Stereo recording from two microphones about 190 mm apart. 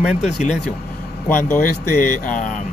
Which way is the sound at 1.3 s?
45° left (ahead or behind).